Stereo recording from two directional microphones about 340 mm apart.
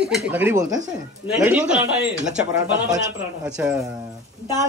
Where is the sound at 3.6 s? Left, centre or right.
Centre.